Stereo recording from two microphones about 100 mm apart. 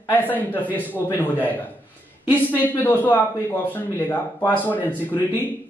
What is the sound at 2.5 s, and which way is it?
A man's voice, 20° left (ahead or behind).